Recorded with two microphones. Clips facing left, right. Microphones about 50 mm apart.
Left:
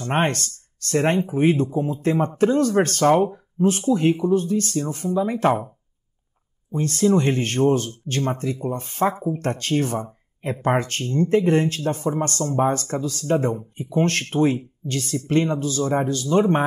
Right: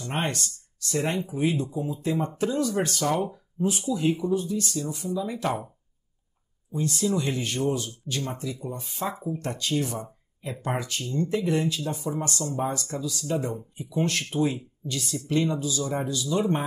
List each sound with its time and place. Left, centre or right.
0.0 s speech: left
6.7 s speech: left